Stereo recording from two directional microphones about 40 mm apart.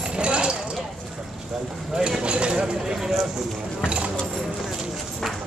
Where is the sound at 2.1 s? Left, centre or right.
Right.